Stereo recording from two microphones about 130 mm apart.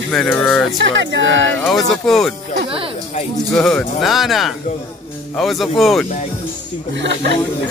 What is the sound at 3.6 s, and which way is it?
Speech, 5° left (ahead or behind).